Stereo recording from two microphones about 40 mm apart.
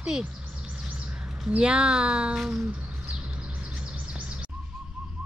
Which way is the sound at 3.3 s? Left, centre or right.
Right.